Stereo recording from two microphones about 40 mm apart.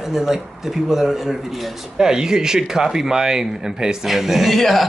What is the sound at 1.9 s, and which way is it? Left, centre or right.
Speech, centre.